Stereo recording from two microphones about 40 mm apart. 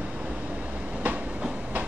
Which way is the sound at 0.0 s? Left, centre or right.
Right.